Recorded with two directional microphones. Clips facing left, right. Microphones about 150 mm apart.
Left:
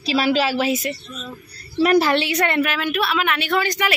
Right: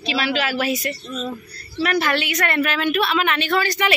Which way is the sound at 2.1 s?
30° left (ahead or behind).